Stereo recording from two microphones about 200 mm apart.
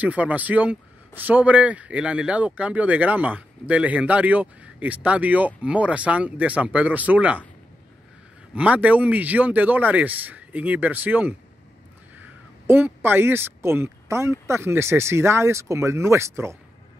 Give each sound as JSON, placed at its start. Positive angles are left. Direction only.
{"t": 0.0, "sound": "a man's voice", "side_deg": -5}
{"t": 8.5, "sound": "a man's voice", "side_deg": -5}
{"t": 12.6, "sound": "a man's voice", "side_deg": -10}